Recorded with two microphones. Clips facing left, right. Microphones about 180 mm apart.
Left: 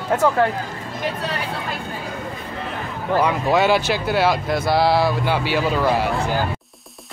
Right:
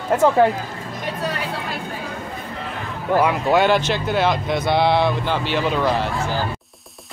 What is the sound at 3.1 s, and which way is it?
Speech, 5° right (ahead or behind).